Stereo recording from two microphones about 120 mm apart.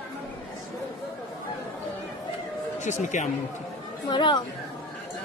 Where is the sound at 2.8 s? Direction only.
90° left.